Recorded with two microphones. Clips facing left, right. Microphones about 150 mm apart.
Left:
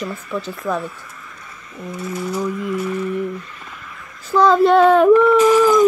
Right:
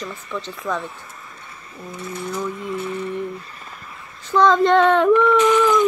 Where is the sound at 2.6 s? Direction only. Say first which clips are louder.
Left 4 dB; 30° right (ahead or behind).